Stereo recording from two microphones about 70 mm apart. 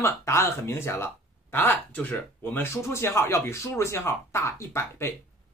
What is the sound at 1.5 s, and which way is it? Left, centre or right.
Speech, left.